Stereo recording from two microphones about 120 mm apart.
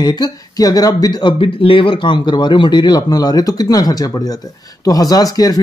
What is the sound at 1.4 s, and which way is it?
Speech, 50° left (ahead or behind).